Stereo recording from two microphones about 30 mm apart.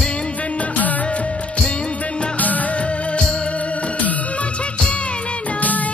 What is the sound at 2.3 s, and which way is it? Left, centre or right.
Music, left.